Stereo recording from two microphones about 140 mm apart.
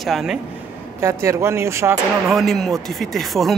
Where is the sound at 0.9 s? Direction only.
20° right (ahead or behind).